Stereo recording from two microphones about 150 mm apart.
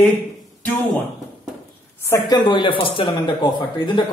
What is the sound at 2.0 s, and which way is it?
A man's voice, 20° left (ahead or behind).